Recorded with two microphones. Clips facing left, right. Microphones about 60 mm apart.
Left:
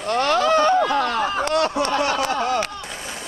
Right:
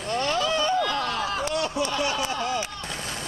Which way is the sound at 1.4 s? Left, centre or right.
Left.